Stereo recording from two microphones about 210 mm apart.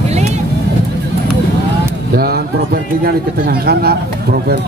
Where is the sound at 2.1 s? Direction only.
45° right (ahead or behind).